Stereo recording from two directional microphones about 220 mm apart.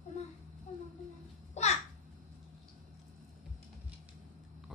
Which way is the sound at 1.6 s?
30° left (ahead or behind).